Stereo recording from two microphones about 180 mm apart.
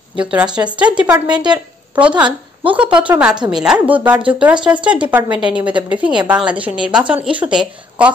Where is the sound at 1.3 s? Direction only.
25° right (ahead or behind).